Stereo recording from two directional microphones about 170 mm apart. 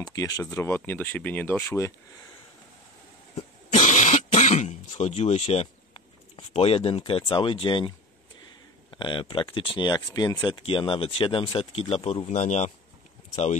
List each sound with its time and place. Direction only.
0.0 s speech: 20° left (ahead or behind)
3.3 s throat clearing: 45° left (ahead or behind)
8.9 s speech: 30° left (ahead or behind)